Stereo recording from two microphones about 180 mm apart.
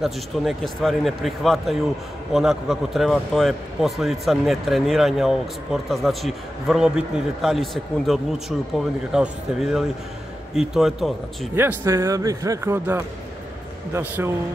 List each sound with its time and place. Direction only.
0.0 s speech: centre (ahead or behind)
11.5 s a man's voice: 15° right (ahead or behind)